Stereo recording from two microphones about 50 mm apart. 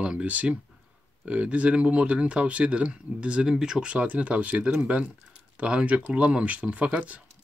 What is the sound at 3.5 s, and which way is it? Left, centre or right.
Speech, centre.